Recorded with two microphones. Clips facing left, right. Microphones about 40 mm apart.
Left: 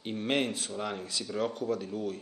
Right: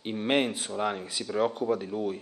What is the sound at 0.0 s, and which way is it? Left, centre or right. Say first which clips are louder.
Speech: right 4 dB; centre.